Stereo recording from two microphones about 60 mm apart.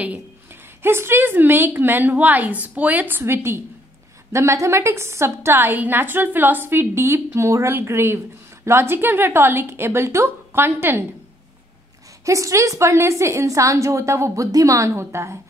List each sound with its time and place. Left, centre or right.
0.8 s a woman's voice: right
4.3 s a woman's voice: right
12.3 s a woman's voice: right
15.0 s a woman's voice: right